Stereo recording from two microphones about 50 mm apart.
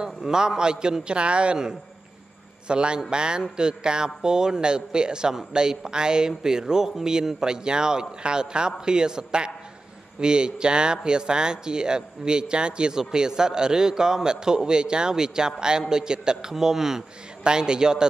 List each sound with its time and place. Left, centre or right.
0.0 s a man's voice: centre